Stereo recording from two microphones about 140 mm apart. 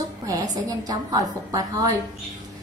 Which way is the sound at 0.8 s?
25° right (ahead or behind).